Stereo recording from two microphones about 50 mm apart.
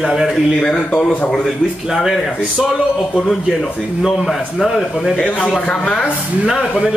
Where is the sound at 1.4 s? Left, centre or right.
Centre.